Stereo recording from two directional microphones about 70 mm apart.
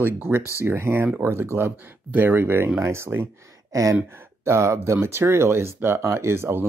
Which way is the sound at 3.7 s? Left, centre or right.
Right.